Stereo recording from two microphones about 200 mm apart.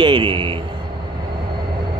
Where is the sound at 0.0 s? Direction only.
25° right (ahead or behind).